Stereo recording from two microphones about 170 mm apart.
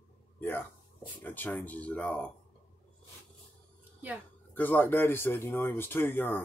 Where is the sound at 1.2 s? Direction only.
10° left (ahead or behind).